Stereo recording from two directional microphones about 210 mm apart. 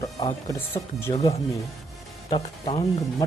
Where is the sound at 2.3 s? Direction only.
25° left (ahead or behind).